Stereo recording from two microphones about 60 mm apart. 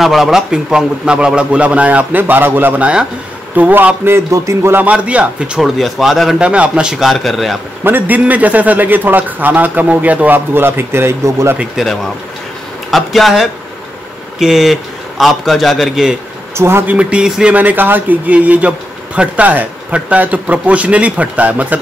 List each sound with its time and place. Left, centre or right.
0.0 s speech: centre; by 2.7 s right
2.8 s speech: centre
4.3 s a man's voice: right
4.8 s speech: right
5.6 s speech: centre
6.4 s a man's voice: centre
7.1 s speech: centre
7.8 s a man's voice: right
11.7 s a man's voice: centre
16.5 s speech: right
16.8 s speech: right
17.6 s speech: right